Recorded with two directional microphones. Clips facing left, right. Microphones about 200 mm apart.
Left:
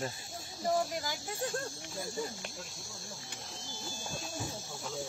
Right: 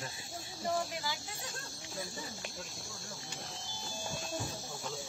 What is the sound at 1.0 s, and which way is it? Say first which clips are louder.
Speech: left 5 dB; 55° left (ahead or behind).